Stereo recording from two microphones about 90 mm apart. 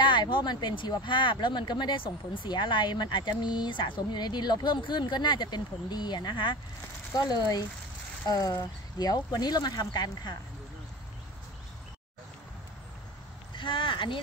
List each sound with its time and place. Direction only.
0.0 s speech: 60° left (ahead or behind)
7.2 s speech: 50° left (ahead or behind)
13.6 s a sound: 70° left (ahead or behind)